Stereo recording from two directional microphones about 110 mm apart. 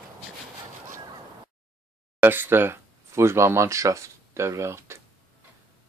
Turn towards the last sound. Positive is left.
turn(degrees=-25)  # may be behind; listen again after turning